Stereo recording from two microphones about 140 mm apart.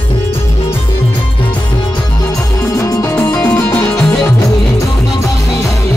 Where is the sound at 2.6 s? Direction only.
20° left (ahead or behind).